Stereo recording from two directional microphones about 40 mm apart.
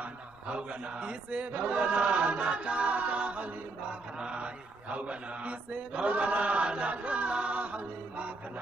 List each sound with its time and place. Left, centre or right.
0.0 s a man's voice: right
1.6 s chant: right
4.2 s mantra: right